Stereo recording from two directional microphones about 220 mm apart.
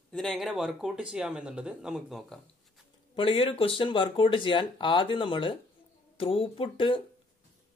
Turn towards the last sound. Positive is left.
turn(degrees=25)  # may be behind; listen again after turning